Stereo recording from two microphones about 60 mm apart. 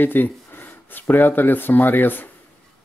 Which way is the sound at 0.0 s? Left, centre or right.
Left.